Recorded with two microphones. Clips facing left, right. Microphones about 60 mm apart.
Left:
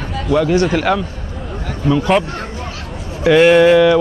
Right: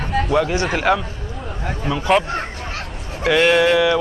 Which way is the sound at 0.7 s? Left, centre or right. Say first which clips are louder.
Left 2 dB; centre.